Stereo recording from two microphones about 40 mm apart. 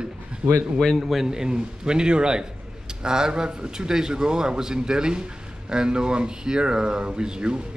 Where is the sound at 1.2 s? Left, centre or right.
Centre.